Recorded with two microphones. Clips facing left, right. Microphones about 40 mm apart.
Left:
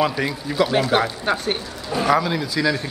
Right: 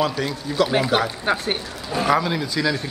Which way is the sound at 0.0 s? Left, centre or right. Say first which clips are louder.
Left 1 dB; centre.